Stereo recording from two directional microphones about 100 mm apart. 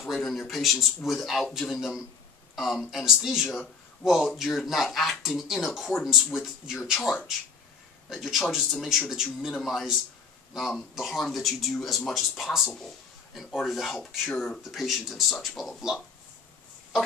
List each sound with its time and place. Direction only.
0.0 s speech: centre (ahead or behind)
8.1 s speech: centre (ahead or behind)